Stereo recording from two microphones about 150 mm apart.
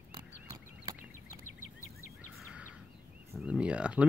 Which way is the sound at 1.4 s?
60° left (ahead or behind).